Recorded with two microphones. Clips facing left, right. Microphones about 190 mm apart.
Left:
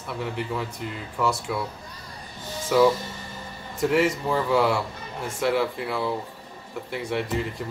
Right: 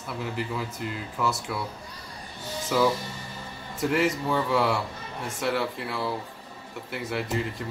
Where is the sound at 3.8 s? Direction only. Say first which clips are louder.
Left 3 dB; centre (ahead or behind).